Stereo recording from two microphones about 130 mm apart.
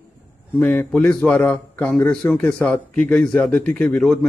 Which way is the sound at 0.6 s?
15° left (ahead or behind).